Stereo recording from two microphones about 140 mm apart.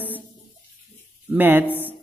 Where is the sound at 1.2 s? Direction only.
15° right (ahead or behind).